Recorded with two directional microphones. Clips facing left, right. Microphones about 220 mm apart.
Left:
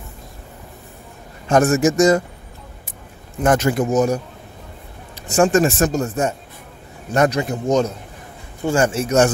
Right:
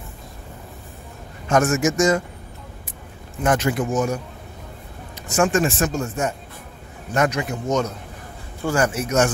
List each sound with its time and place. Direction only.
1.5 s speech: 35° left (ahead or behind)
3.4 s speech: 40° left (ahead or behind)
5.3 s a man's voice: 35° left (ahead or behind)